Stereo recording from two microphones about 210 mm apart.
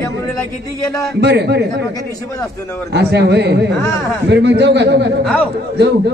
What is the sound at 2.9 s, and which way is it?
A man's voice, 50° right (ahead or behind).